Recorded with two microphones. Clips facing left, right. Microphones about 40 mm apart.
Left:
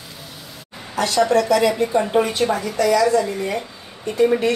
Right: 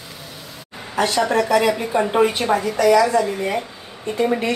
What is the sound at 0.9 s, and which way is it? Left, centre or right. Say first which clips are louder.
A woman's voice: left 1 dB; right.